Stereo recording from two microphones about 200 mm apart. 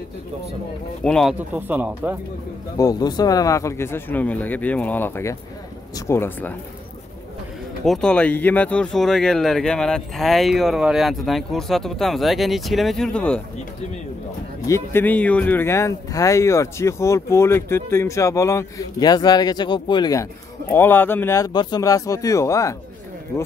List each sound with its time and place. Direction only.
1.0 s speech: 5° left (ahead or behind)
1.5 s speech: 10° right (ahead or behind)
2.8 s speech: 20° left (ahead or behind)
7.8 s speech: 5° left (ahead or behind)
14.7 s speech: 10° left (ahead or behind)